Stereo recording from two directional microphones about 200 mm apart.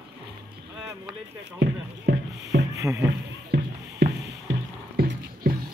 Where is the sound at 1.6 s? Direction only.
60° right (ahead or behind).